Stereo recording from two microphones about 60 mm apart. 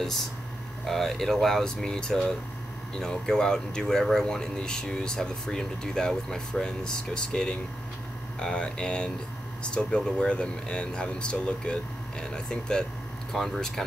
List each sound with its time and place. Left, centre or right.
0.8 s speech: centre